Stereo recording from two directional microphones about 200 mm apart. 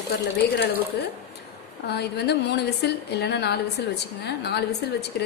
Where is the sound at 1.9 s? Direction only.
55° left (ahead or behind).